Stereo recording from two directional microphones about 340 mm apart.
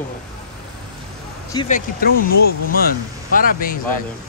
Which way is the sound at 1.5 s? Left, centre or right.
Centre.